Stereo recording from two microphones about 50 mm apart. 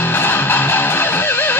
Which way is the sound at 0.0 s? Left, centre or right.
Left.